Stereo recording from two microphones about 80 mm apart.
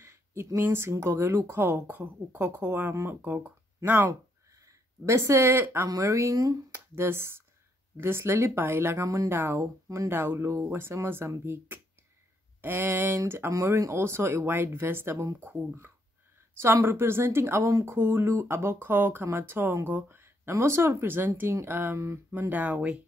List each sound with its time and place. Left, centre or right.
0.0 s a sound: right
0.6 s speech: right
2.9 s speech: right
3.2 s speech: centre
4.1 s a sound: right
5.9 s speech: right
6.7 s speech: right
9.3 s speech: right
13.5 s speech: right
22.4 s speech: right